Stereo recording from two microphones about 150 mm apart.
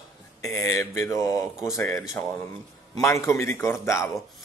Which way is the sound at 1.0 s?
20° left (ahead or behind).